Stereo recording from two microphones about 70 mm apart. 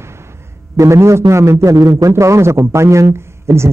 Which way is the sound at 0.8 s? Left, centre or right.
Right.